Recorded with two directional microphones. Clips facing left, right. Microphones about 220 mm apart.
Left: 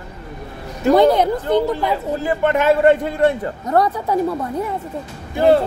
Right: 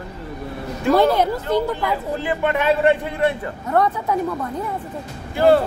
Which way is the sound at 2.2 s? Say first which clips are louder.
Left 4 dB; 45° left (ahead or behind).